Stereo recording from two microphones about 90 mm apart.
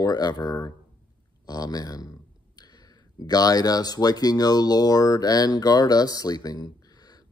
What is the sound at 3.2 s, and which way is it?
Speech, 45° left (ahead or behind).